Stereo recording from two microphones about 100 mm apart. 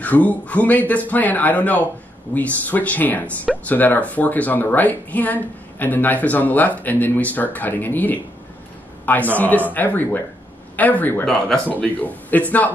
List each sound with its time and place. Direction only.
0.0 s speech: 15° left (ahead or behind)
11.2 s speech: 5° left (ahead or behind)
11.6 s speech: 15° left (ahead or behind)